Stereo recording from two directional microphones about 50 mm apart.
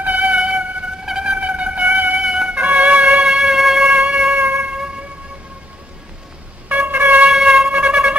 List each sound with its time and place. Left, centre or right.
0.0 s a sound: right
0.4 s vehicle: right
1.0 s a sound: centre
2.2 s trumpet: centre
2.5 s music: right
3.3 s music: centre
3.9 s music: centre
4.4 s a sound: right
6.9 s shofar: right
7.2 s shofar: centre
7.6 s shofar: right